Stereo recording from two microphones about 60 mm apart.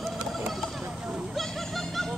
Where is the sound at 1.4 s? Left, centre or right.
Centre.